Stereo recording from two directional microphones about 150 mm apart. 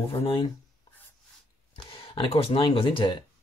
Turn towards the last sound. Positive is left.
turn(degrees=35)  # may be behind; listen again after turning